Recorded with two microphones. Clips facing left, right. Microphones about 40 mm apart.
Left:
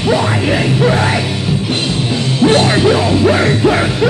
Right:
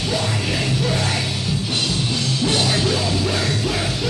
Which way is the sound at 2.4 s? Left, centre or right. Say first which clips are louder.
Left 11 dB; left.